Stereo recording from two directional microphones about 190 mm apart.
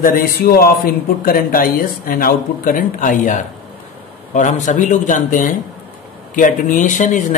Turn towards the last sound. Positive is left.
turn(degrees=40)  # may be behind; listen again after turning